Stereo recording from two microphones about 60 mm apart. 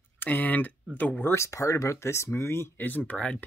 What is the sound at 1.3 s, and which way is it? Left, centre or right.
Speech, left.